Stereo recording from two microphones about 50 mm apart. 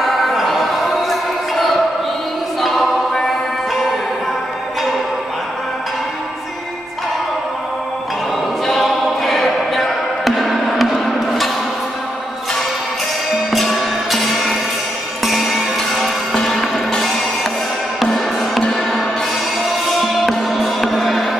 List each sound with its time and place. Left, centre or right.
0.0 s music: centre
2.6 s choir: centre
8.6 s music: centre
13.5 s music: centre
16.4 s music: centre
18.1 s music: centre
20.0 s music: centre